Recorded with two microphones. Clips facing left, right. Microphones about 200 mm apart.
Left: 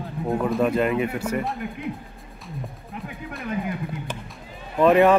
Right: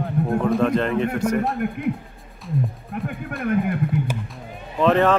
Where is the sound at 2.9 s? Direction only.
50° right (ahead or behind).